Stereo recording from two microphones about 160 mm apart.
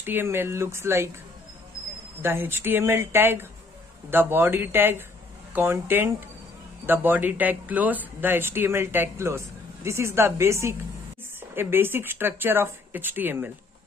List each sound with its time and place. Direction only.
0.0 s speech: 15° right (ahead or behind)
2.2 s speech: 15° right (ahead or behind)